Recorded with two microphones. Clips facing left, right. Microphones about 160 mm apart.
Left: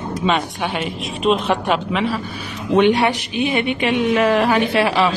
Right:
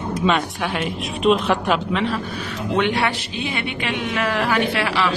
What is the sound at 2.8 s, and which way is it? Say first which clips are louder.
Speech: left 7 dB; 20° left (ahead or behind).